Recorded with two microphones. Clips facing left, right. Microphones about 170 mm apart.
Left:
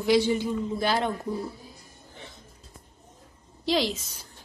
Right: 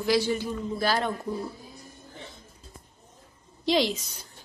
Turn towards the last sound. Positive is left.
turn(degrees=0)  # may be behind; listen again after turning